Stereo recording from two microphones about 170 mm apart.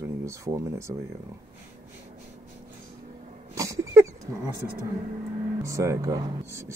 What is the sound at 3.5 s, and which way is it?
Dog, 20° right (ahead or behind).